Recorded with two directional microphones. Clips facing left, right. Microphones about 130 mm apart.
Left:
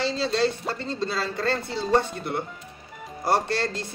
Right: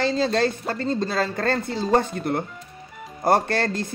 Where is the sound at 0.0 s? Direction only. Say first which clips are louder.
Right 3 dB; 50° right (ahead or behind).